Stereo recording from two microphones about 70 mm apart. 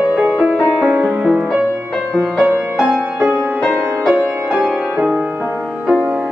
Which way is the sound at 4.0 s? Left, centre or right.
Centre.